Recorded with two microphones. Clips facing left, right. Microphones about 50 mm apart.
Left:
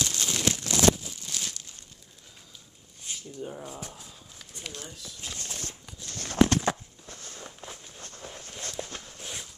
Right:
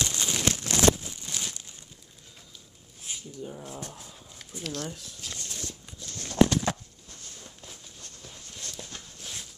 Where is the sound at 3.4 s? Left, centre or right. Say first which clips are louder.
Left 2 dB; centre.